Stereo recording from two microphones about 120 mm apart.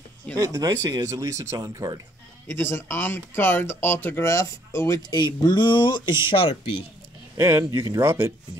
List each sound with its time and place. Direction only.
0.4 s speech: 30° right (ahead or behind)
2.4 s speech: 20° left (ahead or behind); by 6.8 s 50° left (ahead or behind)
7.3 s speech: 25° right (ahead or behind)